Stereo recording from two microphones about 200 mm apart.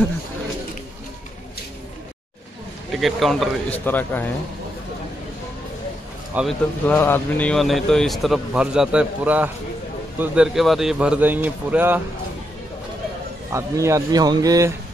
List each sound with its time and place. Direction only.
2.9 s a man's voice: centre (ahead or behind)
6.3 s a man's voice: 10° right (ahead or behind)
6.9 s a man's voice: 10° left (ahead or behind); by 12.0 s 10° right (ahead or behind)
13.5 s a man's voice: 15° right (ahead or behind)